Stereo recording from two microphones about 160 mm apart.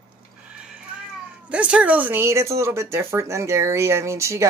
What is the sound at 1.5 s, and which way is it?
Speech, 5° right (ahead or behind).